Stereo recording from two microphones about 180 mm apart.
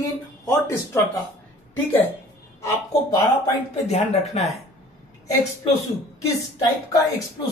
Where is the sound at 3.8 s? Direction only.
35° left (ahead or behind).